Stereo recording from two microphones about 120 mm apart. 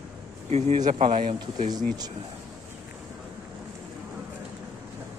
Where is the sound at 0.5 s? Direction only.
65° right (ahead or behind).